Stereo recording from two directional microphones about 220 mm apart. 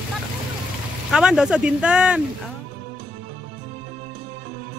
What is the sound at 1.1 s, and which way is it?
Speech, 5° right (ahead or behind).